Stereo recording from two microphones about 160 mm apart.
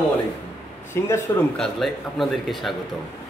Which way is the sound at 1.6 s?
Centre (ahead or behind).